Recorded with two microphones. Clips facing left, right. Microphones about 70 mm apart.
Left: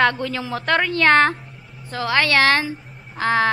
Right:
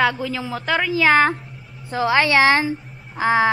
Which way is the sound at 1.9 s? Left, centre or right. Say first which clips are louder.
Right 2 dB; centre.